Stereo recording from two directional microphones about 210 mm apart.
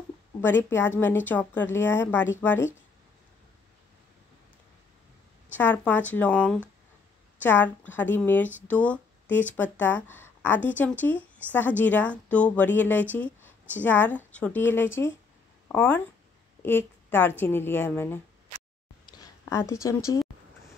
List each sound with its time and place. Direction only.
0.4 s speech: 10° left (ahead or behind)
5.5 s a woman's voice: 10° left (ahead or behind)
19.0 s a sound: 20° left (ahead or behind)